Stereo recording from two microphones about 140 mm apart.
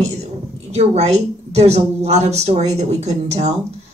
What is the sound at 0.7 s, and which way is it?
Speech, 50° right (ahead or behind).